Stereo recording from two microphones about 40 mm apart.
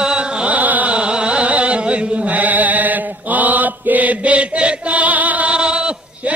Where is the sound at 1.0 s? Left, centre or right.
Right.